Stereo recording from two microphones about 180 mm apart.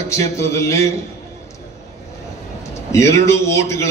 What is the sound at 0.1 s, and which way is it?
Speech, 15° left (ahead or behind).